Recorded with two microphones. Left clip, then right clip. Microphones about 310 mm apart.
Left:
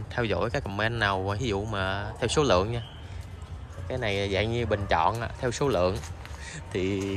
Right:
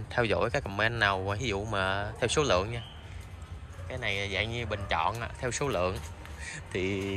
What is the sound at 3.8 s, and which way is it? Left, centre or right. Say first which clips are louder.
Speech: left 4 dB; centre.